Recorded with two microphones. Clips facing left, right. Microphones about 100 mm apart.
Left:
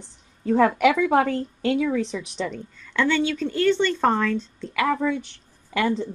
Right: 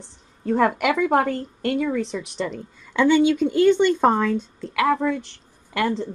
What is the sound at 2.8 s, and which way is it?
Speech, 15° right (ahead or behind).